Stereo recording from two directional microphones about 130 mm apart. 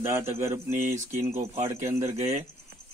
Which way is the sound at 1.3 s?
55° right (ahead or behind).